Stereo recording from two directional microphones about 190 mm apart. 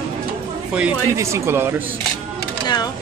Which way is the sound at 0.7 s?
5° right (ahead or behind).